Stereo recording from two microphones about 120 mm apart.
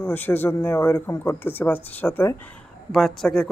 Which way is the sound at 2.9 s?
5° left (ahead or behind).